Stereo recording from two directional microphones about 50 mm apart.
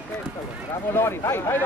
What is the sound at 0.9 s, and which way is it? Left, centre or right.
Speech, left.